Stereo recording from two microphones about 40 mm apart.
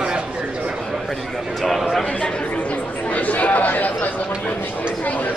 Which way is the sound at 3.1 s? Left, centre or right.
Left.